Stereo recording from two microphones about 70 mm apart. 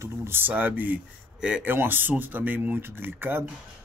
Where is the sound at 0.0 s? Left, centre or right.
Right.